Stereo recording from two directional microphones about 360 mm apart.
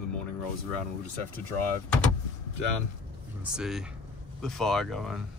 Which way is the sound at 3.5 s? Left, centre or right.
Centre.